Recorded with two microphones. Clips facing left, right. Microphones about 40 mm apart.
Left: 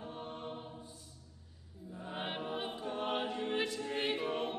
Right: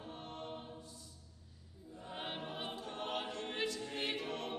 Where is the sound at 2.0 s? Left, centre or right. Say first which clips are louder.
Left 4 dB; centre.